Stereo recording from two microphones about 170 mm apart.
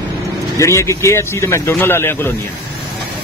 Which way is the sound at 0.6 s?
15° left (ahead or behind).